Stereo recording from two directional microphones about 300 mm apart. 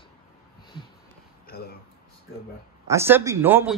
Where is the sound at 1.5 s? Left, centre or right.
Left.